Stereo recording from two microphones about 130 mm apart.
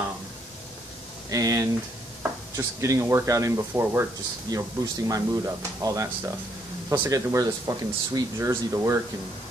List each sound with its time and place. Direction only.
1.3 s speech: 25° right (ahead or behind)